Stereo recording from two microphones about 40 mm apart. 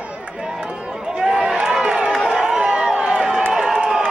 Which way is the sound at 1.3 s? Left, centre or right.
Centre.